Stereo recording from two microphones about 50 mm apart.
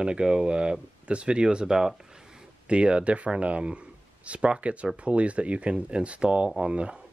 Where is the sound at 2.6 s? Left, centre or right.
Right.